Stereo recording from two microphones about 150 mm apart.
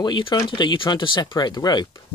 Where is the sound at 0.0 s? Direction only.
30° left (ahead or behind).